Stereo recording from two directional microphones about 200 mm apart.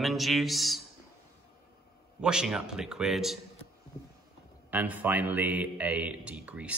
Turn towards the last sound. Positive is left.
turn(degrees=-5)  # may be behind; listen again after turning